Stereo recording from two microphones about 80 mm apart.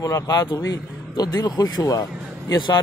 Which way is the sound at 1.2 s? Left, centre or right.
Left.